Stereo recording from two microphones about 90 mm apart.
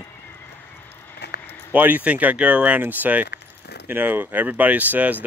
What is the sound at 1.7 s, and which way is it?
Speech, 20° right (ahead or behind).